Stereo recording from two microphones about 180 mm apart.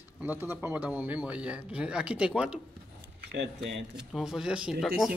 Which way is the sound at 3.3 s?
75° right (ahead or behind).